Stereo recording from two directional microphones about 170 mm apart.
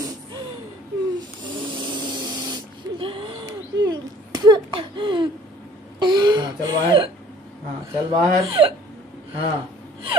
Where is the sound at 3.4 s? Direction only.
20° right (ahead or behind).